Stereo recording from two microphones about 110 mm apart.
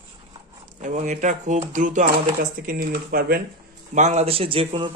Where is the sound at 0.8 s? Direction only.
90° right.